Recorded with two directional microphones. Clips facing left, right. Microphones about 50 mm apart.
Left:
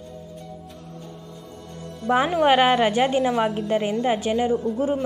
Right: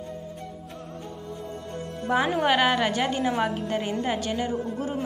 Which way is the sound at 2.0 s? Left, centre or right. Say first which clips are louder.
Left 5 dB; left.